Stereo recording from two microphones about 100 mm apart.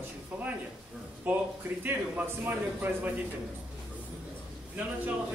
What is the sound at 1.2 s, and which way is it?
Speech, 20° right (ahead or behind).